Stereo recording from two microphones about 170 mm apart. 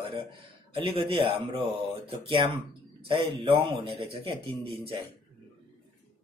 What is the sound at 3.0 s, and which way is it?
Speech, 30° right (ahead or behind).